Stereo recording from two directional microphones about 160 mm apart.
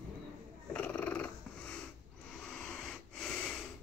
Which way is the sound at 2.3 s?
5° left (ahead or behind).